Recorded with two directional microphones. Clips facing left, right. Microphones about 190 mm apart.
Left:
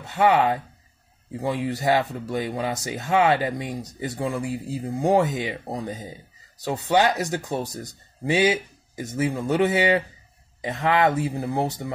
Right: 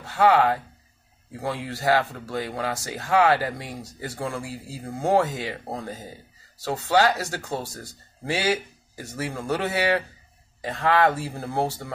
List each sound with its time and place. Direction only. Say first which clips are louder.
0.0 s speech: even; 20° left (ahead or behind)